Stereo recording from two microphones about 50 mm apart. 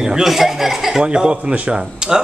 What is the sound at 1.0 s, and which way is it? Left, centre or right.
Speech, centre.